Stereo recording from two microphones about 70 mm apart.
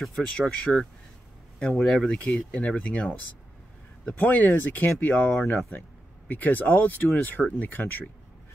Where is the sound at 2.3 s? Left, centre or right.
Left.